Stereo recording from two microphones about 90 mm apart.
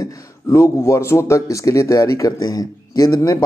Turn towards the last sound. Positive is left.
turn(degrees=45)  # may be behind; listen again after turning